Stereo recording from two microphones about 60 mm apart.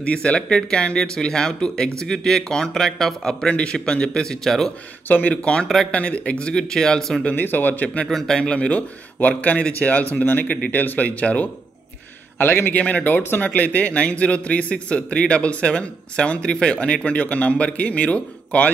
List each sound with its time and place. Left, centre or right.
0.0 s speech: centre
5.0 s speech: left
5.3 s speech: centre
7.3 s a man's voice: left
8.1 s a man's voice: centre
8.5 s a man's voice: left
12.4 s a man's voice: left
12.7 s a man's voice: left